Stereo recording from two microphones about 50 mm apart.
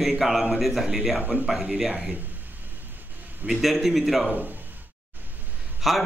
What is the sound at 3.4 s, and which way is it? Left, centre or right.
Speech, centre.